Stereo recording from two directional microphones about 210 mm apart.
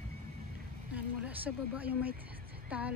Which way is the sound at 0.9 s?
5° right (ahead or behind).